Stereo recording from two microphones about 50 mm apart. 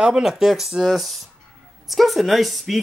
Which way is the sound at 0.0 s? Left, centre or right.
Centre.